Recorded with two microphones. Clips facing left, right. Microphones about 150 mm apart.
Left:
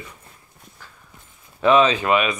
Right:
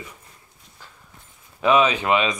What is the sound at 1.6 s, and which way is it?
Speech, 10° right (ahead or behind).